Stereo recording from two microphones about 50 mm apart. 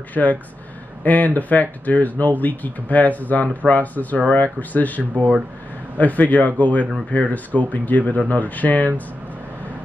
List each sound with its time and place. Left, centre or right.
0.1 s speech: left
5.1 s speech: right
5.9 s speech: left